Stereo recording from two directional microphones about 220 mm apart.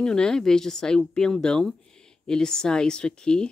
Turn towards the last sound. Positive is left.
turn(degrees=5)  # may be behind; listen again after turning